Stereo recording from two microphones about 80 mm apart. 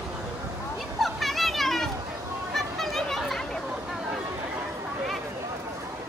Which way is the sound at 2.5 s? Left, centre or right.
Centre.